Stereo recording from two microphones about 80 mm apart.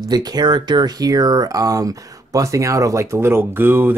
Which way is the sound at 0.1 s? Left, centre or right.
Right.